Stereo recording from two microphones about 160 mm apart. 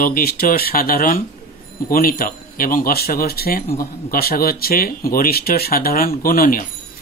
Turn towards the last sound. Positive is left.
turn(degrees=65)  # may be behind; listen again after turning